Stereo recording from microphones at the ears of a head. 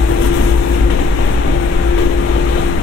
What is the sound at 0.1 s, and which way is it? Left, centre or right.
Vehicle, left.